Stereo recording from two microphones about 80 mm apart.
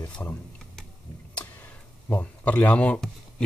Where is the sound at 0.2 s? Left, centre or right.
Left.